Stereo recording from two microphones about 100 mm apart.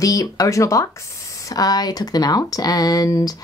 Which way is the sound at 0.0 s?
35° left (ahead or behind).